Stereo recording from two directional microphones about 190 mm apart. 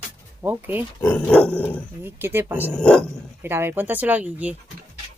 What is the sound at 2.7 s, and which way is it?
Dog, 5° left (ahead or behind).